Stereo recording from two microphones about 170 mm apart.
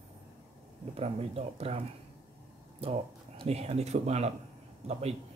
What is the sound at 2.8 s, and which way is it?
Speech, 35° right (ahead or behind).